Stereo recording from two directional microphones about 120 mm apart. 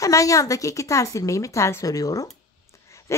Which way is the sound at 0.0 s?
25° left (ahead or behind).